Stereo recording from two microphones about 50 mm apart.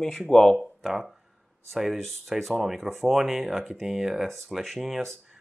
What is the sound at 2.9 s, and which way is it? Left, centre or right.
Speech, centre.